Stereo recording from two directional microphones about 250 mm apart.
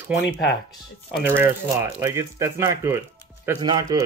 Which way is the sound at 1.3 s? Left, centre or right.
Centre.